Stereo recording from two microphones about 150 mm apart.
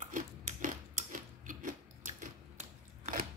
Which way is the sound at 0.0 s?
60° right (ahead or behind).